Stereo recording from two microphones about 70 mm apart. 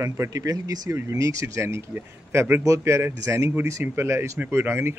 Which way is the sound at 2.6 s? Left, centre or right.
Right.